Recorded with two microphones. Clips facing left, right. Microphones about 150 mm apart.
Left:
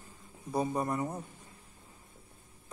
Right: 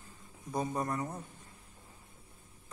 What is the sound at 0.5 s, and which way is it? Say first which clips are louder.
Speech: left 3 dB; 10° left (ahead or behind).